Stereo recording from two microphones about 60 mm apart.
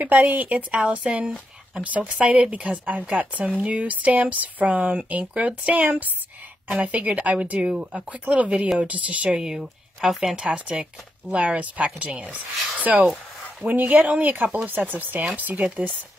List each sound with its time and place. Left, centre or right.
0.0 s a woman's voice: right
9.4 s speech: centre; by 15.6 s right